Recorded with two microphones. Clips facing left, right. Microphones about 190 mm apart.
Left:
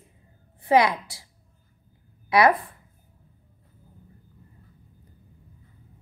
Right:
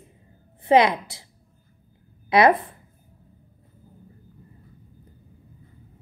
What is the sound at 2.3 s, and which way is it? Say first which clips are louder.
Speech: right 2 dB; 25° right (ahead or behind).